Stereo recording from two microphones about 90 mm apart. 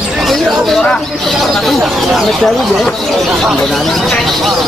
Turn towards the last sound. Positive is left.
turn(degrees=0)  # may be behind; listen again after turning